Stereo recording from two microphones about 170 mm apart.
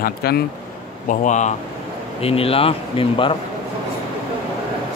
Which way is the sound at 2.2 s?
35° left (ahead or behind).